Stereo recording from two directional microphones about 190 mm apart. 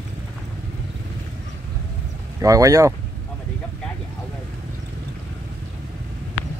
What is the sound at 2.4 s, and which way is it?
Speech, 15° right (ahead or behind).